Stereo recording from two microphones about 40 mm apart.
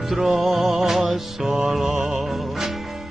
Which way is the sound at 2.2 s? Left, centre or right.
Centre.